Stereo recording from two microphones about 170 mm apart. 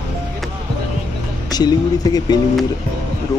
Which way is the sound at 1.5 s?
25° left (ahead or behind).